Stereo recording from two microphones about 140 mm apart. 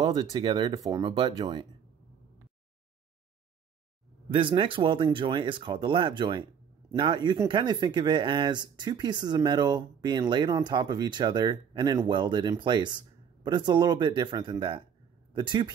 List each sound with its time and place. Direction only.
0.0 s speech: 30° right (ahead or behind)
4.3 s speech: 35° right (ahead or behind)